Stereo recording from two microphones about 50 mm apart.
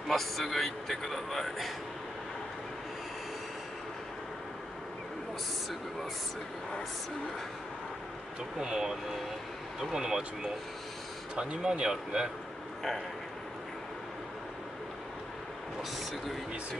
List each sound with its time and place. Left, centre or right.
0.1 s a man's voice: centre
8.5 s speech: centre
15.8 s a man's voice: centre